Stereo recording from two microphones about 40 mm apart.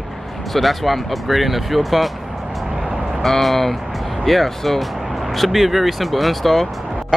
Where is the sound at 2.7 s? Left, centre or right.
Centre.